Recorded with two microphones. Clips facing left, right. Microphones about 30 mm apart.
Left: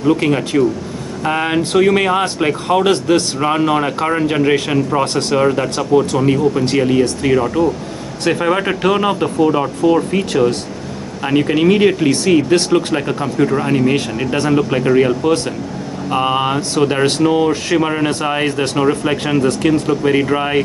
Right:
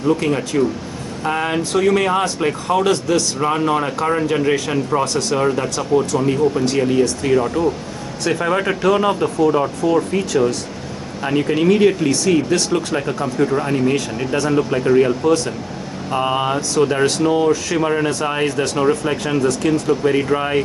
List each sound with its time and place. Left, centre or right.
0.2 s speech: left
6.8 s speech: left